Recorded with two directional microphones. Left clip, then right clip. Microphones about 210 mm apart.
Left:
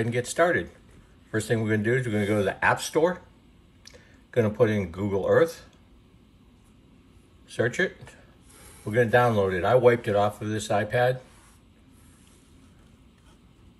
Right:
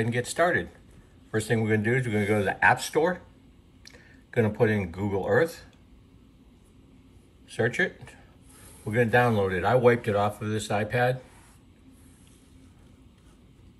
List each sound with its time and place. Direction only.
0.0 s speech: 15° left (ahead or behind)
7.4 s speech: 10° left (ahead or behind)